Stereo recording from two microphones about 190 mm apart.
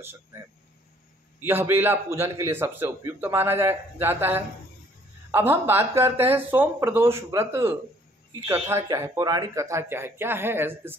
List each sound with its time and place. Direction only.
1.4 s a man's voice: 10° right (ahead or behind)